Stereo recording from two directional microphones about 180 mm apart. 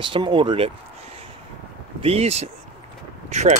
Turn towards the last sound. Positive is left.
turn(degrees=-40)  # may be behind; listen again after turning